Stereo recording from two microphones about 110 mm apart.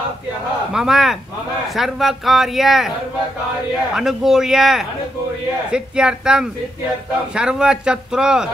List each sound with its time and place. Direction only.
0.7 s speech: 5° right (ahead or behind)
3.9 s speech: 5° right (ahead or behind)